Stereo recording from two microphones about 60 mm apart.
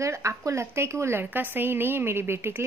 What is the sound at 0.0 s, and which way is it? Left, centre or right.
Speech, right.